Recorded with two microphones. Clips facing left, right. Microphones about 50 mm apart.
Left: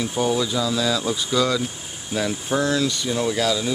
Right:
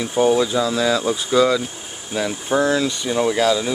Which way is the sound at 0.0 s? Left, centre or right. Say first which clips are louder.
Right 5 dB; centre.